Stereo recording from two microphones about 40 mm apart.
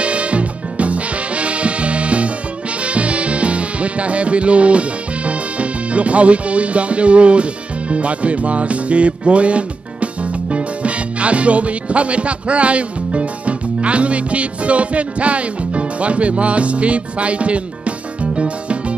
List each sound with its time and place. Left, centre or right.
0.0 s music: right